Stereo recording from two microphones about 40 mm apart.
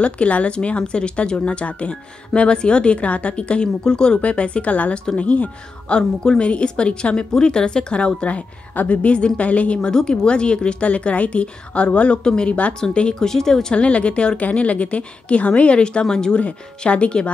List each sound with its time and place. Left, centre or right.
0.0 s speech: left
4.2 s a woman's voice: left
5.9 s a woman's voice: left
9.8 s speech: centre
12.2 s speech: centre
12.4 s a woman's voice: left
13.2 s speech: centre
13.7 s a woman's voice: left